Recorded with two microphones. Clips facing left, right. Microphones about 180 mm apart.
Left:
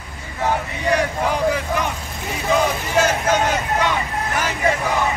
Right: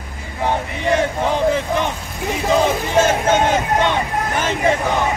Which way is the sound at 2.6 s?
25° right (ahead or behind).